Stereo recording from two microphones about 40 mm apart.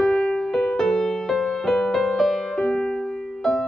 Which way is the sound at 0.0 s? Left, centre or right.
Centre.